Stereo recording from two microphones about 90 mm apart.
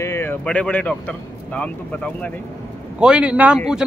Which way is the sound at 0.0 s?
30° left (ahead or behind).